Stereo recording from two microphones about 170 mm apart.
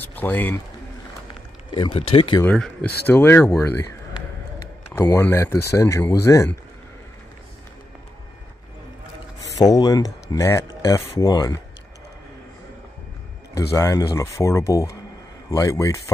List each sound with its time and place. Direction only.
0.0 s speech: 10° left (ahead or behind)
1.7 s speech: 30° left (ahead or behind)
2.4 s speech: 5° left (ahead or behind)
9.6 s speech: 20° left (ahead or behind)
13.6 s speech: 20° left (ahead or behind)